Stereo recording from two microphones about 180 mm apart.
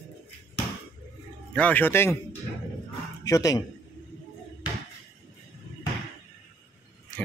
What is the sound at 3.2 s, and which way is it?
Speech, 20° left (ahead or behind).